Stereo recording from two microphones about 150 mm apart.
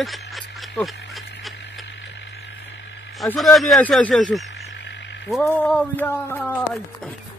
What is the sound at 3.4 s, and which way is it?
Speech, centre (ahead or behind).